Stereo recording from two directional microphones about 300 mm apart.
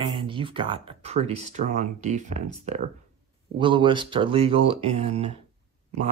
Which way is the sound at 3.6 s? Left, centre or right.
Centre.